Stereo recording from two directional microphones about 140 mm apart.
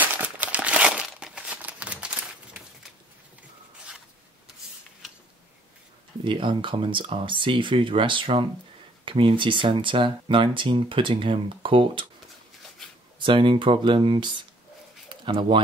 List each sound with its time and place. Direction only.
0.0 s crumpling: 10° right (ahead or behind)
6.2 s speech: 35° right (ahead or behind)
12.6 s a sound: 5° left (ahead or behind)
13.2 s speech: 35° right (ahead or behind)